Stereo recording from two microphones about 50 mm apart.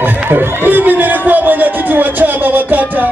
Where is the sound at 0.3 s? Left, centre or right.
Right.